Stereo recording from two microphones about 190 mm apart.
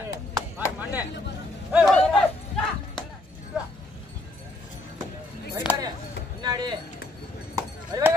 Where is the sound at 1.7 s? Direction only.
Centre (ahead or behind).